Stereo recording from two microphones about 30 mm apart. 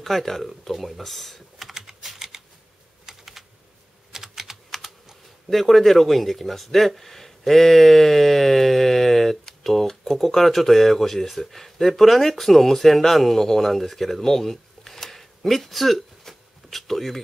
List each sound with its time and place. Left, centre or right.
0.0 s speech: centre
1.7 s typing: centre
4.1 s typing: centre
4.6 s computer keyboard: centre
5.5 s speech: centre